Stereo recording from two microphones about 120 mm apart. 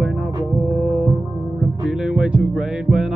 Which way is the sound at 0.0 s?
10° right (ahead or behind).